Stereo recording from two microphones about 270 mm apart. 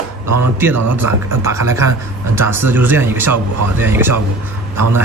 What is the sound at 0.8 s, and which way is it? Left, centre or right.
Speech, right.